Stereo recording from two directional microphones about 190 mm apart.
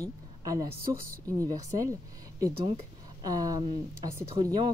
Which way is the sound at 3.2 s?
20° right (ahead or behind).